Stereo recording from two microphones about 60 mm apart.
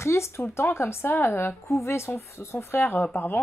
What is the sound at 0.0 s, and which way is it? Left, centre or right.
Speech, left.